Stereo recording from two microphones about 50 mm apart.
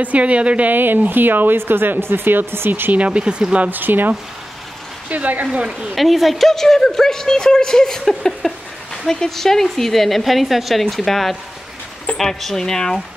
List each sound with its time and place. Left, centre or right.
0.0 s speech: right
0.7 s speech: right
3.1 s speech: centre
3.7 s speech: right
5.1 s speech: right
5.9 s a woman's voice: centre